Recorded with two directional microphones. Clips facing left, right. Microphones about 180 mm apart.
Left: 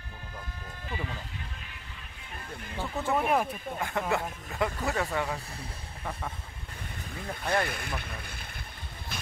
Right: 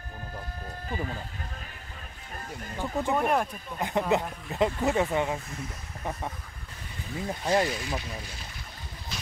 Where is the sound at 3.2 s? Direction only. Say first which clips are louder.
Even; centre (ahead or behind).